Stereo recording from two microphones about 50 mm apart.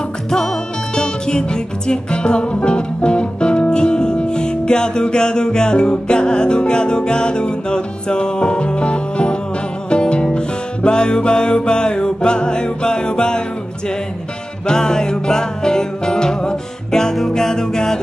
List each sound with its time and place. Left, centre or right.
0.3 s music: centre
14.7 s music: centre